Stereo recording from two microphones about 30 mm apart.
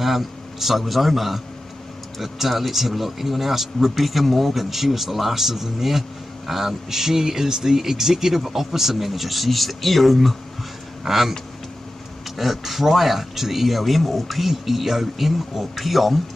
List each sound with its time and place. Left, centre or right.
0.0 s a man's voice: centre
11.1 s speech: centre
12.4 s speech: centre